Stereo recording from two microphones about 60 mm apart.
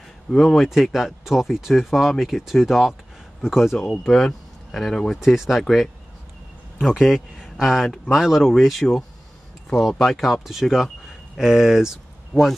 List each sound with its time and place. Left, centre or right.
0.3 s speech: centre
3.7 s speech: centre